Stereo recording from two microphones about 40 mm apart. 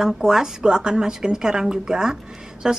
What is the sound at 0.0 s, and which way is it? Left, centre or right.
A woman's voice, centre.